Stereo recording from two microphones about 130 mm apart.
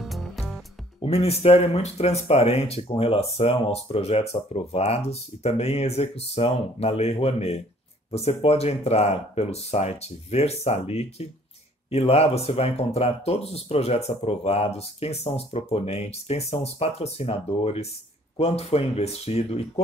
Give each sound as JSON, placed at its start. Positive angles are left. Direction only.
{"t": 0.0, "sound": "music", "side_deg": 0}
{"t": 1.0, "sound": "speech", "side_deg": 50}